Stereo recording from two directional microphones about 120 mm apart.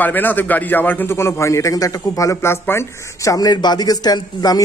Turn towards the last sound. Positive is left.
turn(degrees=35)  # may be behind; listen again after turning